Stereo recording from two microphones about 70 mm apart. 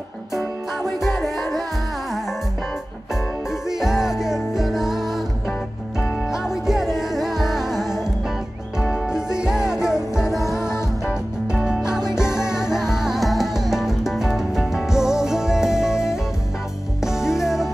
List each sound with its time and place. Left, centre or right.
0.4 s music: centre
3.6 s music: centre
6.2 s music: centre
10.7 s music: left
11.4 s music: centre